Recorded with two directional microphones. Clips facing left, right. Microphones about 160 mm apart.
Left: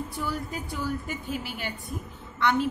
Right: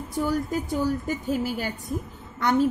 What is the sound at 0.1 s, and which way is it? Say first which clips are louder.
A woman's voice: right 7 dB; 45° right (ahead or behind).